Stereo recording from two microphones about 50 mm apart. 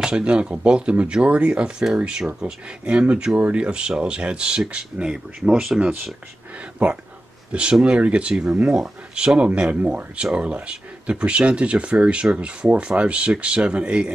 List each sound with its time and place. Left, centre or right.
0.0 s speech: centre
6.6 s speech: right